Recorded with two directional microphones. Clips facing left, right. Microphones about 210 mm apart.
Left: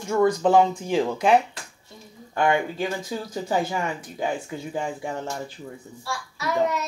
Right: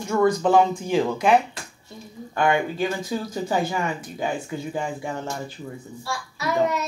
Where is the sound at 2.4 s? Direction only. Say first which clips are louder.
Right 1 dB; 25° left (ahead or behind).